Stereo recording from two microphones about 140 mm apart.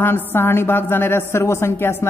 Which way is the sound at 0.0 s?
15° left (ahead or behind).